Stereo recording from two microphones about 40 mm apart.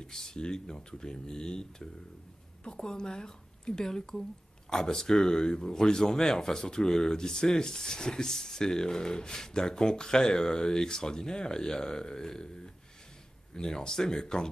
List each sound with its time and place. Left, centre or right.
0.0 s speech: centre